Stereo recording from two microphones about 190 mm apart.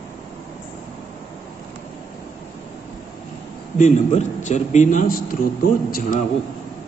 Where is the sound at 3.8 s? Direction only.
40° left (ahead or behind).